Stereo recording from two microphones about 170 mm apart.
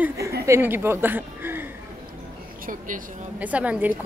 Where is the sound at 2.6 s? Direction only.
50° right (ahead or behind).